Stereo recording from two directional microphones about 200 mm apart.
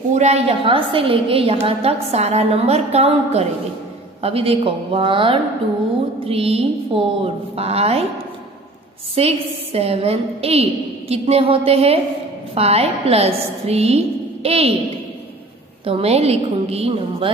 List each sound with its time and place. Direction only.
0.1 s a woman's voice: 35° right (ahead or behind)
9.1 s a woman's voice: 30° right (ahead or behind)
15.8 s a woman's voice: 30° right (ahead or behind)